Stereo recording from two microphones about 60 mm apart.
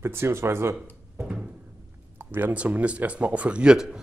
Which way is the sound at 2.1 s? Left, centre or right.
Right.